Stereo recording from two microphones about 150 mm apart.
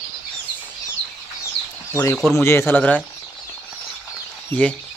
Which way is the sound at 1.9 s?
10° left (ahead or behind).